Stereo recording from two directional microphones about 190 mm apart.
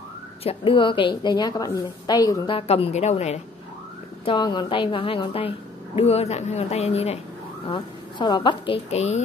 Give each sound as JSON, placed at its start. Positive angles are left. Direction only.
{"t": 0.4, "sound": "a woman's voice", "side_deg": 30}
{"t": 4.2, "sound": "a woman's voice", "side_deg": 25}